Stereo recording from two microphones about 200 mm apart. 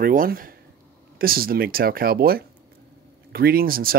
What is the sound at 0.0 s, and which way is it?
Speech, 45° right (ahead or behind).